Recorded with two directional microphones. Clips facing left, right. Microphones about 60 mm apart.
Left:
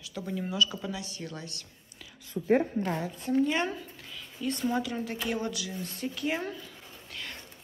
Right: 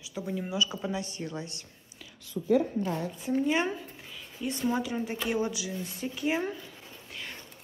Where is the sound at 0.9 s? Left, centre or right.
Right.